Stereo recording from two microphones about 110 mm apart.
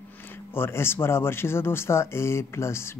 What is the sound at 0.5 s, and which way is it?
Speech, 20° left (ahead or behind).